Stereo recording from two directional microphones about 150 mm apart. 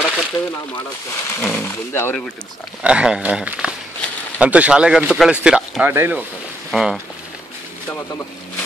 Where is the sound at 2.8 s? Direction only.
5° right (ahead or behind).